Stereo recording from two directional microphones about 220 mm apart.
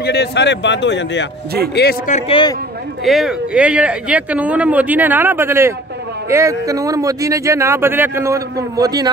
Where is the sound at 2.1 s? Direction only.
25° left (ahead or behind).